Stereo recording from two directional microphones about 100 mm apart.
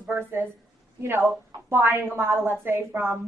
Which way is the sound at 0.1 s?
20° right (ahead or behind).